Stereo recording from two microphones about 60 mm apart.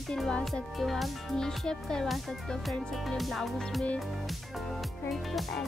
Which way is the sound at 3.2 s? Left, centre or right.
Centre.